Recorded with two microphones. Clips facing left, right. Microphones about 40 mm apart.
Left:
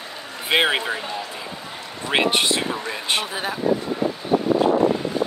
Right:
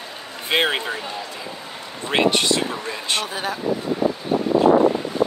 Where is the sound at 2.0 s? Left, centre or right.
Centre.